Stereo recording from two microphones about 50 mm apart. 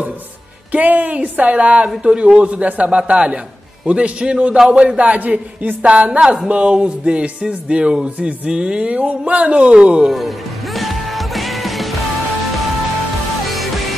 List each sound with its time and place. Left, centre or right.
0.7 s speech: right
10.0 s music: centre
13.5 s music: centre